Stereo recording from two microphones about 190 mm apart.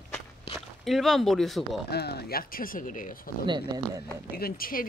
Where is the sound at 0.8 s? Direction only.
Centre (ahead or behind).